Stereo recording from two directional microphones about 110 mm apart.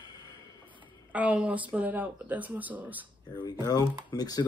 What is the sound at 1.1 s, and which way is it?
Speech, 15° right (ahead or behind).